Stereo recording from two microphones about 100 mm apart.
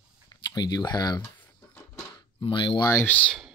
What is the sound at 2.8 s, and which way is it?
Speech, 30° left (ahead or behind).